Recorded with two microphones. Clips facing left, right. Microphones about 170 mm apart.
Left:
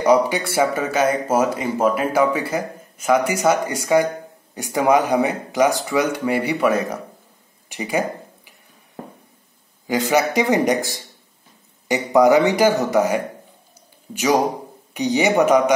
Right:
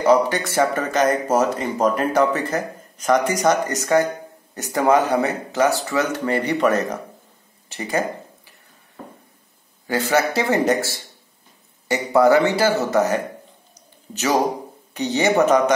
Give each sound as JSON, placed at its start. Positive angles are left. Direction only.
{"t": 0.0, "sound": "speech", "side_deg": 10}
{"t": 9.8, "sound": "speech", "side_deg": 15}
{"t": 15.0, "sound": "speech", "side_deg": 15}